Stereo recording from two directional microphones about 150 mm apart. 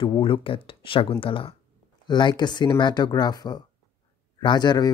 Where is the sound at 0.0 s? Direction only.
35° left (ahead or behind).